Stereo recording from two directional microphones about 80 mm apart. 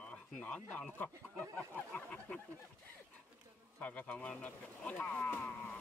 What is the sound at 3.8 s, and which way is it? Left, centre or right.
Speech, centre.